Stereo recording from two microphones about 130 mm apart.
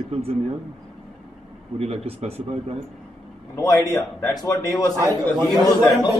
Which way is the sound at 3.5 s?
25° left (ahead or behind).